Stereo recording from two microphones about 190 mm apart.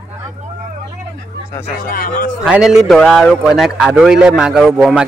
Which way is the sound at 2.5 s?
5° right (ahead or behind).